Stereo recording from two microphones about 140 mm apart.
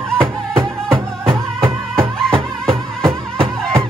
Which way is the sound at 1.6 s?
20° right (ahead or behind).